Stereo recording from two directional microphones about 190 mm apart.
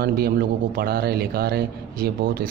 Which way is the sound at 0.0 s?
55° right (ahead or behind).